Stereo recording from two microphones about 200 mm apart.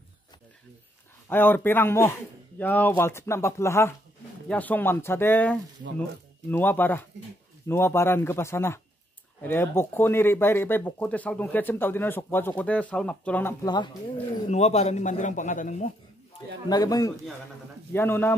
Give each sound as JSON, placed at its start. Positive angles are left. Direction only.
{"t": 1.3, "sound": "speech", "side_deg": 10}
{"t": 14.5, "sound": "a man's voice", "side_deg": 35}
{"t": 16.6, "sound": "speech", "side_deg": 20}